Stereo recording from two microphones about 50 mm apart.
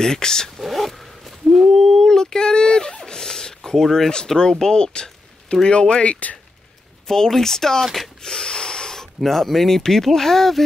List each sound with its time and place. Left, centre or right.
0.0 s speech: centre
0.6 s zipper: centre
4.1 s speech: centre
7.1 s speech: centre
7.8 s speech: centre
8.2 s speech: centre